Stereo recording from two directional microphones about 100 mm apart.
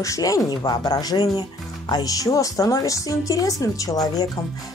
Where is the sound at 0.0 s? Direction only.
35° left (ahead or behind).